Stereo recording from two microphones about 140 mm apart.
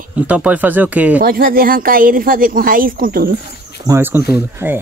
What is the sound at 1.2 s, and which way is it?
Speech, 90° right.